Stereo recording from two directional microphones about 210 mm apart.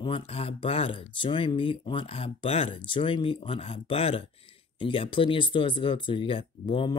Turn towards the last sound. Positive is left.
turn(degrees=25)  # may be behind; listen again after turning